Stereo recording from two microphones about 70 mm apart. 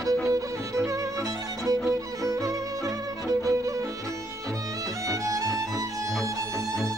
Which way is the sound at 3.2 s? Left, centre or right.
Right.